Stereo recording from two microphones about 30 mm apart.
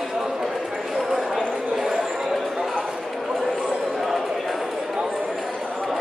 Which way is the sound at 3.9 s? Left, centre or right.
Centre.